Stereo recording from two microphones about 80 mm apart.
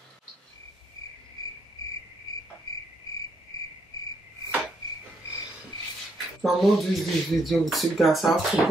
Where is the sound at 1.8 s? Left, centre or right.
Left.